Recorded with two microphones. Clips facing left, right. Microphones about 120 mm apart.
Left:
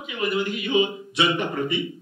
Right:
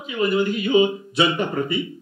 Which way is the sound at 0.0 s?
30° right (ahead or behind).